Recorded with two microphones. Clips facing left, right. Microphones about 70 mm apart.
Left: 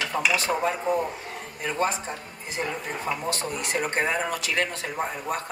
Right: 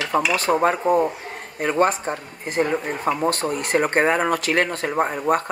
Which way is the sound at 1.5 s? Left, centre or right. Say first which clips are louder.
Right 7 dB; right.